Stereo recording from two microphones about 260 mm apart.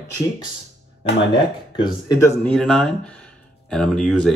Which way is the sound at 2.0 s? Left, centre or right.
Centre.